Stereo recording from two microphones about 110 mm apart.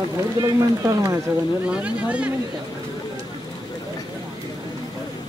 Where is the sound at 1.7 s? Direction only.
10° right (ahead or behind).